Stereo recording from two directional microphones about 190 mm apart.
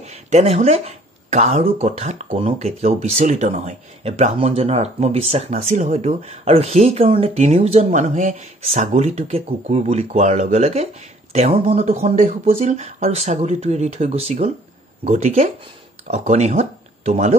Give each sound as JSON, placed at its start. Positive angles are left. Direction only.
{"t": 0.0, "sound": "speech", "side_deg": -35}